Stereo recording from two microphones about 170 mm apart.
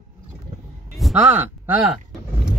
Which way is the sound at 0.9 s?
5° right (ahead or behind).